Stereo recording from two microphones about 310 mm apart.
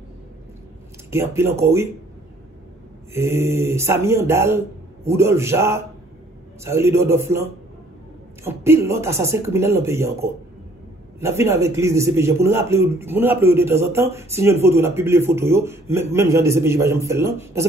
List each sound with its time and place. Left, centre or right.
1.1 s a man's voice: centre
3.1 s a man's voice: centre
8.5 s a man's voice: centre